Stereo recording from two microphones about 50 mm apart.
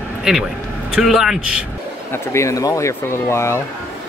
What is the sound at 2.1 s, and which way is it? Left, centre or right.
Speech, left.